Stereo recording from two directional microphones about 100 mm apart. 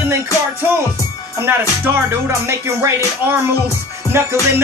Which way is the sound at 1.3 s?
20° right (ahead or behind).